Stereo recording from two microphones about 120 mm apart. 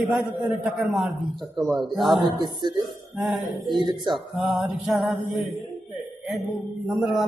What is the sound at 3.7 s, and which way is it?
Speech, 40° right (ahead or behind).